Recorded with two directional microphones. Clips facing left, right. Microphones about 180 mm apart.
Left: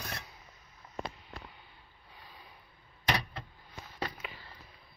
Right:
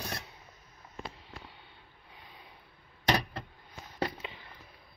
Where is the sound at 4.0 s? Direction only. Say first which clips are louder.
Right 5 dB; 25° right (ahead or behind).